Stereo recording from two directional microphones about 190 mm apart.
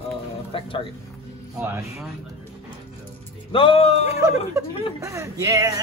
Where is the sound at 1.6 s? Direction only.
15° right (ahead or behind).